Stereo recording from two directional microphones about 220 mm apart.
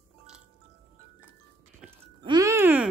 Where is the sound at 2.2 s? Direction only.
15° right (ahead or behind).